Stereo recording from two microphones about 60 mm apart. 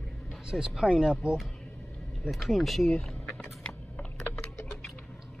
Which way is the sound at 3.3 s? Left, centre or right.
Centre.